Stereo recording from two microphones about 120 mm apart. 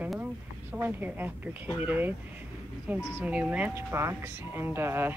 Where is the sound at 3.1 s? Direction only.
10° right (ahead or behind).